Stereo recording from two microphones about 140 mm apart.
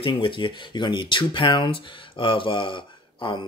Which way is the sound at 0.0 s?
35° left (ahead or behind).